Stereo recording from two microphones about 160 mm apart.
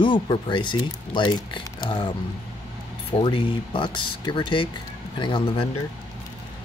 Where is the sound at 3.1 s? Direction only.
35° left (ahead or behind).